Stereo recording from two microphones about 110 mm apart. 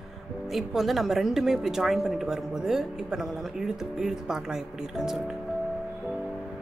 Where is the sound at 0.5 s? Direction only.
Centre (ahead or behind).